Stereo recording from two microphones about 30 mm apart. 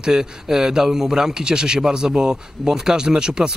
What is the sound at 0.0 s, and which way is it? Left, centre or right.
Speech, centre.